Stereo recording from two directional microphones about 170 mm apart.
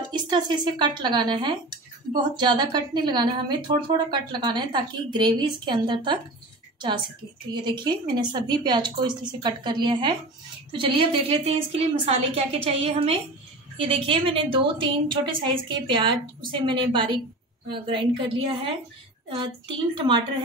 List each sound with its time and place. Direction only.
0.1 s a woman's voice: 25° right (ahead or behind)
7.5 s a woman's voice: 25° right (ahead or behind)